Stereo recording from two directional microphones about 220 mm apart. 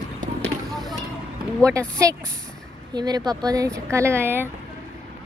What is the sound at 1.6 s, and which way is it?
Speech, 15° right (ahead or behind).